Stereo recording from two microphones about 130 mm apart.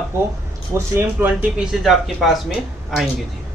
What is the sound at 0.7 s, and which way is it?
Speech, 15° right (ahead or behind).